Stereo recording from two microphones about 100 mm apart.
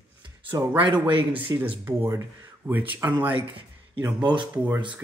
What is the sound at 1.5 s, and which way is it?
Speech, 40° right (ahead or behind).